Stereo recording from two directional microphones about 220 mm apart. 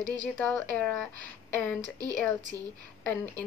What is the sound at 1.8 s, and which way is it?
Speech, 15° right (ahead or behind).